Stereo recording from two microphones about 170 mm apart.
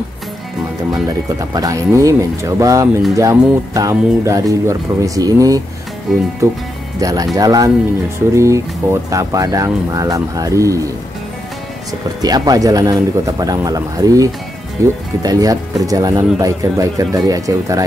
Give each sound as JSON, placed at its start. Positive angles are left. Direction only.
{"t": 1.5, "sound": "speech", "side_deg": -20}
{"t": 6.1, "sound": "speech", "side_deg": 0}
{"t": 7.0, "sound": "speech", "side_deg": -20}
{"t": 12.2, "sound": "speech", "side_deg": -20}